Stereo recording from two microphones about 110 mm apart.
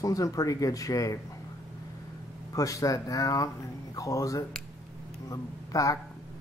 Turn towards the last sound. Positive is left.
turn(degrees=30)  # may be behind; listen again after turning